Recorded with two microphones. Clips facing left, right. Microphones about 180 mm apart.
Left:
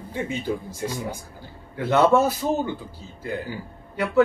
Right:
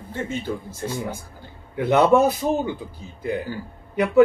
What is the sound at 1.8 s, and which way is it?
A man's voice, 15° right (ahead or behind).